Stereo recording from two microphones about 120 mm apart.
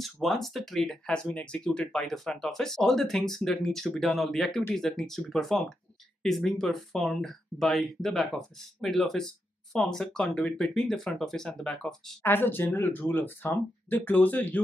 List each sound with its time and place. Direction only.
0.0 s speech: centre (ahead or behind)
12.2 s speech: 15° left (ahead or behind)